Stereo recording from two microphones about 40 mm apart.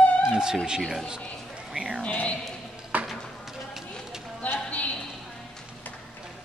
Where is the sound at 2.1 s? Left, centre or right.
Left.